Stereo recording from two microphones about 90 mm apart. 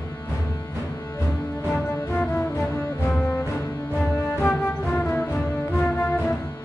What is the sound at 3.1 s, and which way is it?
Music, 15° left (ahead or behind).